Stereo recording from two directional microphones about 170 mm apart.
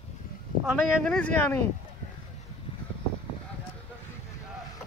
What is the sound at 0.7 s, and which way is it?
Speech, 5° left (ahead or behind).